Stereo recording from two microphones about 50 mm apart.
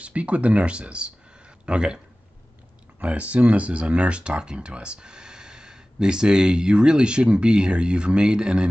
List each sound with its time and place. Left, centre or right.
0.0 s speech: right
3.0 s speech: right